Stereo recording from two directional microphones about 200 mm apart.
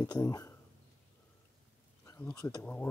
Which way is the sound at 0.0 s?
20° left (ahead or behind).